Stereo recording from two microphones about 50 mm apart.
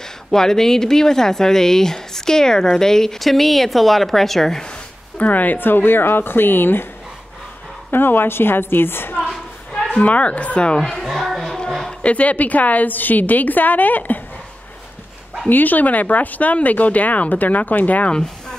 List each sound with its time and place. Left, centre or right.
0.3 s speech: centre
5.1 s speech: left
7.9 s speech: left
9.7 s speech: left
11.1 s a sound: centre
12.0 s speech: left
15.4 s speech: left
18.1 s speech: centre